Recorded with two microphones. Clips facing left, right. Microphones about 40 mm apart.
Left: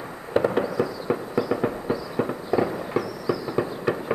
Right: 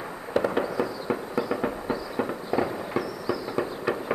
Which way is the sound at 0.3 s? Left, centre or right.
Centre.